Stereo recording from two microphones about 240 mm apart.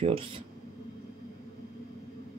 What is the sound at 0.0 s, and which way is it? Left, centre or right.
Speech, right.